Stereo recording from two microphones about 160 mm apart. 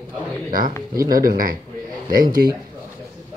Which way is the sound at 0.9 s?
65° right (ahead or behind).